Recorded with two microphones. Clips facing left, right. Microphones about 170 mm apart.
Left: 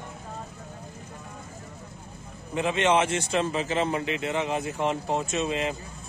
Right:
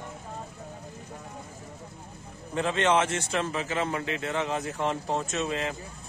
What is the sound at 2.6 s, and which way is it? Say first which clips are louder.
A man's voice: left 1 dB; 15° left (ahead or behind).